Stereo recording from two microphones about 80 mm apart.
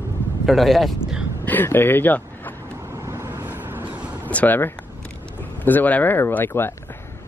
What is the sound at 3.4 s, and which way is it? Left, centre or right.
Vehicle, right.